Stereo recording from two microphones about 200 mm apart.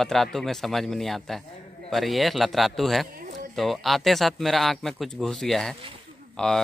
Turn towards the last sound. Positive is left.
turn(degrees=5)  # may be behind; listen again after turning